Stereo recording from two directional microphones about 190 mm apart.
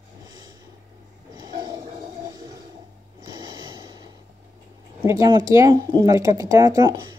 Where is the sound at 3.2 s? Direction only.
20° right (ahead or behind).